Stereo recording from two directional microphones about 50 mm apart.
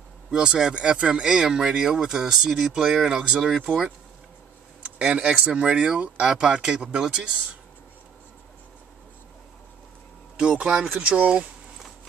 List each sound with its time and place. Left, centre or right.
0.3 s speech: centre
10.4 s speech: centre